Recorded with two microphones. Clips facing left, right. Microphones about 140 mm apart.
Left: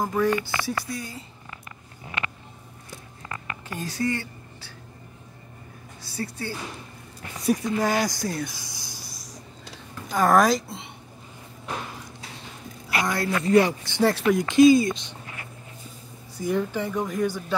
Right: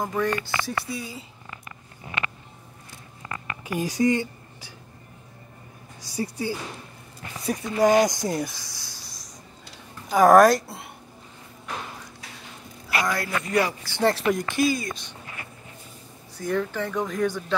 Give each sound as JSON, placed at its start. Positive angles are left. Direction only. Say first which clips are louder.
{"t": 0.0, "sound": "speech", "louder": "left 2 dB", "side_deg": 5}
{"t": 3.6, "sound": "speech", "louder": "right 6 dB", "side_deg": -15}
{"t": 6.0, "sound": "speech", "louder": "right 4 dB", "side_deg": -15}
{"t": 7.7, "sound": "speech", "louder": "right 5 dB", "side_deg": -15}
{"t": 8.5, "sound": "a sound", "louder": "left 2 dB", "side_deg": 15}
{"t": 10.1, "sound": "speech", "louder": "right 5 dB", "side_deg": -10}
{"t": 13.0, "sound": "a man's voice", "louder": "left 3 dB", "side_deg": 25}
{"t": 14.0, "sound": "speech", "louder": "left 1 dB", "side_deg": 5}
{"t": 14.5, "sound": "a man's voice", "louder": "left 9 dB", "side_deg": 20}
{"t": 16.3, "sound": "speech", "louder": "left 1 dB", "side_deg": 10}